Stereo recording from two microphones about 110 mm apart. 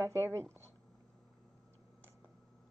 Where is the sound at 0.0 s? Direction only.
25° right (ahead or behind).